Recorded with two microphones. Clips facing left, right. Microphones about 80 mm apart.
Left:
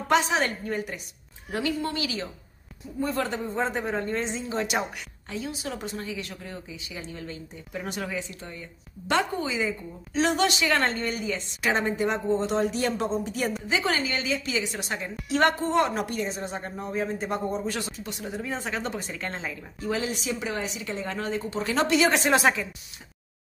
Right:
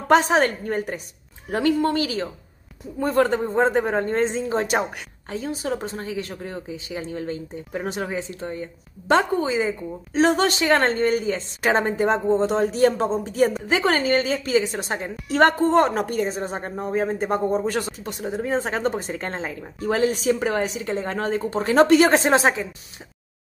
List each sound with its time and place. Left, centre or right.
0.1 s a woman's voice: right
13.7 s speech: right
19.5 s a woman's voice: right
22.2 s a woman's voice: right